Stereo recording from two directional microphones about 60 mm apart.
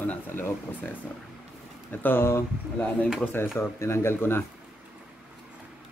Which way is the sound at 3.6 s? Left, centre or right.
Left.